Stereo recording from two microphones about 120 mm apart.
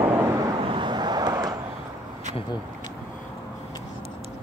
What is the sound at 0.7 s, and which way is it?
Vehicle, 40° right (ahead or behind).